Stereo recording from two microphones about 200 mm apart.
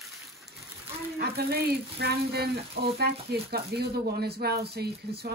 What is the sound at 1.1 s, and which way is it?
Speech, 50° right (ahead or behind).